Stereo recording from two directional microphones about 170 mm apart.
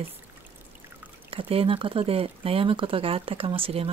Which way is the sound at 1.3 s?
35° right (ahead or behind).